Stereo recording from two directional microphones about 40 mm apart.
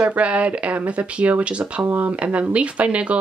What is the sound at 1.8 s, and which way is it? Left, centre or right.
Speech, right.